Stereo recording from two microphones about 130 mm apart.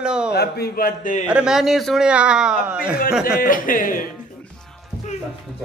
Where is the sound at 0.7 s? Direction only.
90° left.